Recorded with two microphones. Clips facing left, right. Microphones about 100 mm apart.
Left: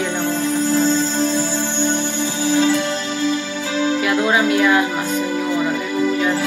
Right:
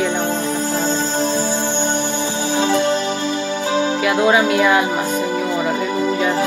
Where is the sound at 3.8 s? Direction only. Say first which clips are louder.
Even; 20° right (ahead or behind).